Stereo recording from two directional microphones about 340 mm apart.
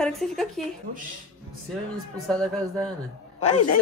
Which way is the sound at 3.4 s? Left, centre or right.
Left.